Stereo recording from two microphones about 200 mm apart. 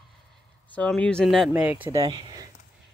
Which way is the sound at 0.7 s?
5° left (ahead or behind).